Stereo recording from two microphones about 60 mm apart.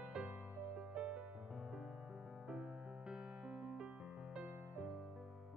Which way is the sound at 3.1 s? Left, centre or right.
Centre.